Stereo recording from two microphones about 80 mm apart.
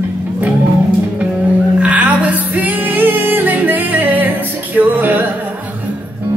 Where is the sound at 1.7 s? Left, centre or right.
Centre.